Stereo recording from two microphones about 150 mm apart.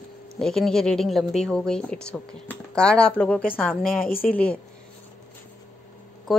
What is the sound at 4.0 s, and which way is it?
Speech, 80° left.